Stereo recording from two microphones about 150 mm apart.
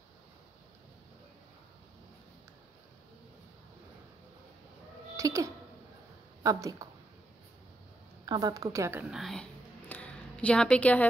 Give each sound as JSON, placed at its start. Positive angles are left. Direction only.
{"t": 5.1, "sound": "a woman's voice", "side_deg": -20}
{"t": 8.3, "sound": "a woman's voice", "side_deg": -25}
{"t": 9.0, "sound": "a sound", "side_deg": 0}